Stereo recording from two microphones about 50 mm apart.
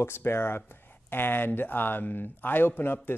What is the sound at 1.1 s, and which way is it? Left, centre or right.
Speech, left.